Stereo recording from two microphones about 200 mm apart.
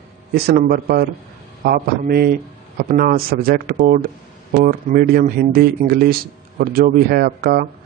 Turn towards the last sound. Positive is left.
turn(degrees=-50)  # may be behind; listen again after turning